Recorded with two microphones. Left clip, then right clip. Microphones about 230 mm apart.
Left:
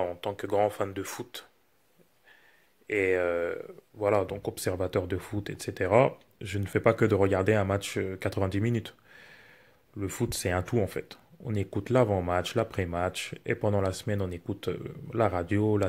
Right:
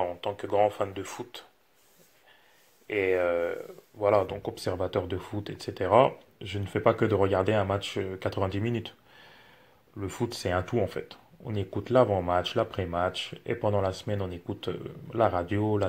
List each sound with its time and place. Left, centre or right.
0.0 s speech: left
2.9 s speech: left